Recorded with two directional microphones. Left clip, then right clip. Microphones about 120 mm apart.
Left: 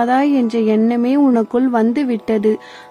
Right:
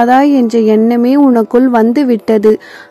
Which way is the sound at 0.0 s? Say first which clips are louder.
Right 7 dB; 40° right (ahead or behind).